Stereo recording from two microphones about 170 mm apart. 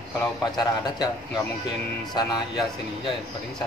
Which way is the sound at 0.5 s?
25° left (ahead or behind).